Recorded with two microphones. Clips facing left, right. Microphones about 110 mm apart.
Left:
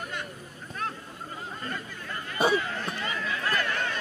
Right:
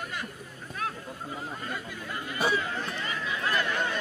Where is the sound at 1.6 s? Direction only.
10° right (ahead or behind).